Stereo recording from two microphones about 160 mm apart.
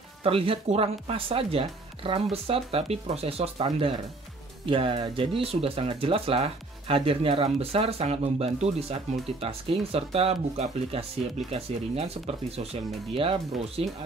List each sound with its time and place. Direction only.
0.2 s speech: 35° right (ahead or behind)
4.6 s speech: 35° right (ahead or behind)